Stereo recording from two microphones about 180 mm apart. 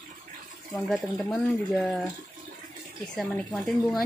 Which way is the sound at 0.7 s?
Centre (ahead or behind).